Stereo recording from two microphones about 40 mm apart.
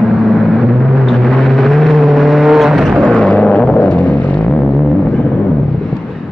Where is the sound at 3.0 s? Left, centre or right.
Left.